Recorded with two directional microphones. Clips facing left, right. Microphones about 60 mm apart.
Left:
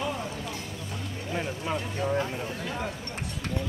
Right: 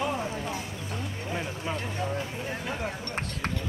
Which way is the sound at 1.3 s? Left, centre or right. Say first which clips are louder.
Left 3 dB; centre.